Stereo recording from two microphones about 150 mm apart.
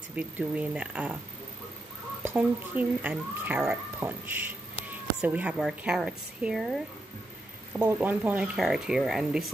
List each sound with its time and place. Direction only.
0.1 s speech: 10° right (ahead or behind)
2.2 s speech: 10° right (ahead or behind)
7.7 s speech: 10° right (ahead or behind)